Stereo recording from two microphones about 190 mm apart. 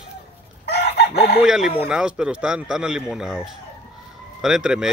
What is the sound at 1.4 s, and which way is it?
Speech, 5° right (ahead or behind).